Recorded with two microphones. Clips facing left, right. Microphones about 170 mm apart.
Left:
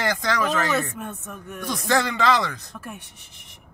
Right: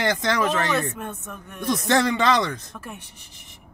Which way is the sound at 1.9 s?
25° right (ahead or behind).